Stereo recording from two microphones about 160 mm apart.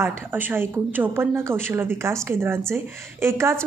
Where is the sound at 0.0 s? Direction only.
10° right (ahead or behind).